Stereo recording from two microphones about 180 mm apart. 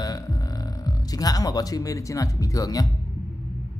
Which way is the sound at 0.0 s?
20° left (ahead or behind).